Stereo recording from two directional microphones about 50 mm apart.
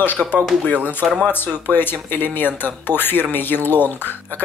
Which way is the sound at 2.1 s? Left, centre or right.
Left.